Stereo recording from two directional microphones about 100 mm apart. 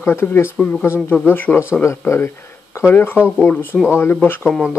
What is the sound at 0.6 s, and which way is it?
Speech, 10° left (ahead or behind).